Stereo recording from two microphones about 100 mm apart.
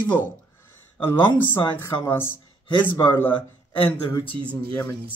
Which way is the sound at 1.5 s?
20° left (ahead or behind).